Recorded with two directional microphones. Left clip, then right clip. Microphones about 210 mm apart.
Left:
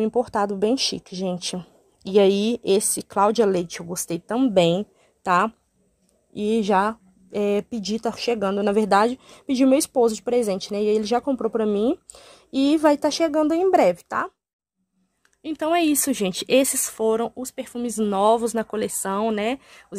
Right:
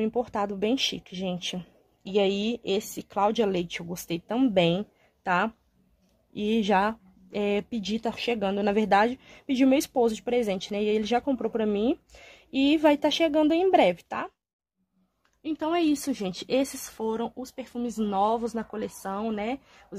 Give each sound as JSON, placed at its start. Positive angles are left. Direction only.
{"t": 0.0, "sound": "speech", "side_deg": 20}
{"t": 15.4, "sound": "speech", "side_deg": 40}